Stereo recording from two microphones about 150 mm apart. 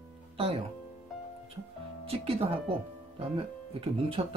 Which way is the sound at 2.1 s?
40° right (ahead or behind).